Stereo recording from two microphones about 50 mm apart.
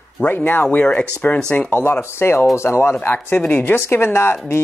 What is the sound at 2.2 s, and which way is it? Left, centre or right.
Speech, left.